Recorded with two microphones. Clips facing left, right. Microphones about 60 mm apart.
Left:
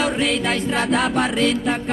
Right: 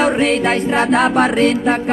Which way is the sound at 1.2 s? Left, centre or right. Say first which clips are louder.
Right 6 dB; right.